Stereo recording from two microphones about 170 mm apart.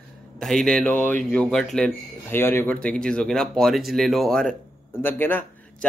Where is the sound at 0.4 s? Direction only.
Centre (ahead or behind).